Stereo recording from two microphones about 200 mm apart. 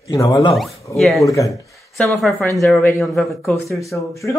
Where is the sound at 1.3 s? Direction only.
15° left (ahead or behind).